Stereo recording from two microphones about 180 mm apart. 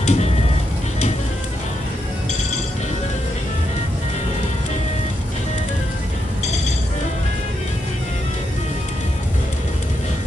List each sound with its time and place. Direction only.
0.0 s music: 40° left (ahead or behind)